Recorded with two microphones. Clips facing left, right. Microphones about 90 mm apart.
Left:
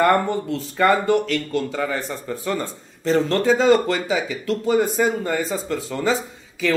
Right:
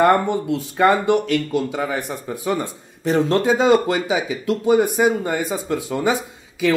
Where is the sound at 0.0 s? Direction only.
10° right (ahead or behind).